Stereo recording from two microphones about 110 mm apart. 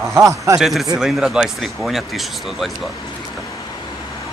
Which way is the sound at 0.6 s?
Centre (ahead or behind).